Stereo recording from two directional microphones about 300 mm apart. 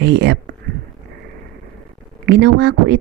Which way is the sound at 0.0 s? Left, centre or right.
Right.